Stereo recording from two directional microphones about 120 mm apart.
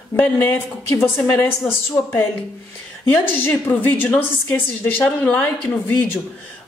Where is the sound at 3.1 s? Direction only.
15° left (ahead or behind).